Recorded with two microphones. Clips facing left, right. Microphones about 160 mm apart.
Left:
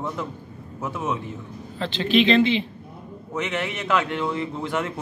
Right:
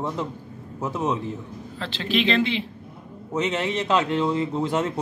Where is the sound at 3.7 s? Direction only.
25° right (ahead or behind).